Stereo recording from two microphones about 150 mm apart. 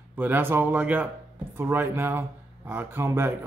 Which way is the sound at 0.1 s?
10° right (ahead or behind).